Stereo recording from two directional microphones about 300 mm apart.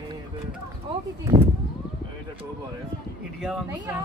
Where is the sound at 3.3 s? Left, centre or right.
Centre.